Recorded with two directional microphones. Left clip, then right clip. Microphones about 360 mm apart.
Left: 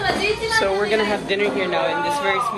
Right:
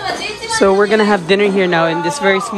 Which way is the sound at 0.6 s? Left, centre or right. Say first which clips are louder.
Right 10 dB; right.